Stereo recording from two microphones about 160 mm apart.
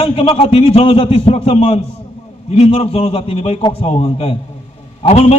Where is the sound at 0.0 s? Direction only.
35° left (ahead or behind).